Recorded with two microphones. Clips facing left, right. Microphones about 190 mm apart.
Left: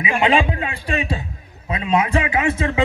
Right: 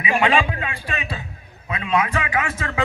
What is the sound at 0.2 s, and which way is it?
Speech, 20° left (ahead or behind).